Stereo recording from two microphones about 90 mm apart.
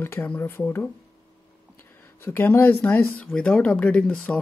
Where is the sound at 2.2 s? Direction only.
25° left (ahead or behind).